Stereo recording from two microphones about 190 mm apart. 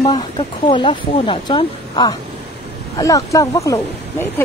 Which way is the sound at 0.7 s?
25° left (ahead or behind).